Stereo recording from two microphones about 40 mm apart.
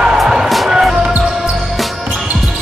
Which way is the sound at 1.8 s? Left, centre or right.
Centre.